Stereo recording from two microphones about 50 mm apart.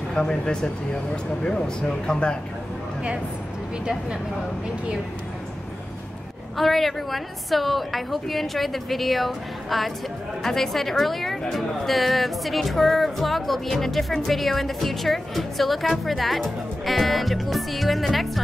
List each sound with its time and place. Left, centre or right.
0.1 s speech: centre
3.8 s speech: centre
6.5 s speech: centre